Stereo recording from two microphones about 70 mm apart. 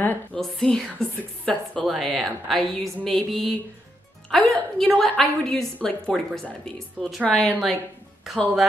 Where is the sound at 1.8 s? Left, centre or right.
Centre.